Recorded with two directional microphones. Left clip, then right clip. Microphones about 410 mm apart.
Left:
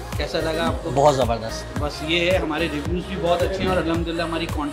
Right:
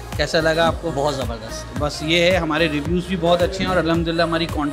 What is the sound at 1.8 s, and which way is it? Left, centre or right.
Speech, right.